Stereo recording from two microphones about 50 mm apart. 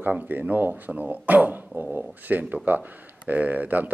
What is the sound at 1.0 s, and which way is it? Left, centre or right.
Speech, right.